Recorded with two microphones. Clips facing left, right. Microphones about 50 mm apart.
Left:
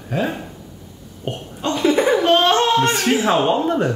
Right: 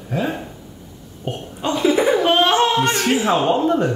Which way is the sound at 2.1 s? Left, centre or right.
Centre.